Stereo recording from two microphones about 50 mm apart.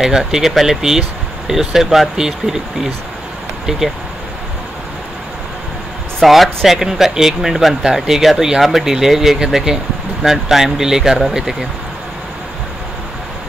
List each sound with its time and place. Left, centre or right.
0.0 s speech: centre
6.2 s speech: centre